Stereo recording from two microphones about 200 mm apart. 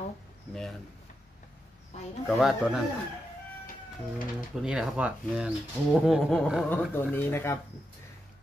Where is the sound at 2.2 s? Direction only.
5° right (ahead or behind).